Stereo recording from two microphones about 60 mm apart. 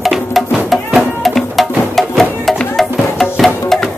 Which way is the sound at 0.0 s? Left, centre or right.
Centre.